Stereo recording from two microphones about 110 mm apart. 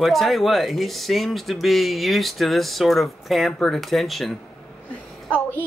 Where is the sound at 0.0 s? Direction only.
Centre (ahead or behind).